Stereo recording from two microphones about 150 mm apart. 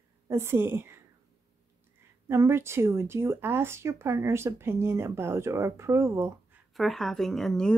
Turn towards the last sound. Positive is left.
turn(degrees=5)  # may be behind; listen again after turning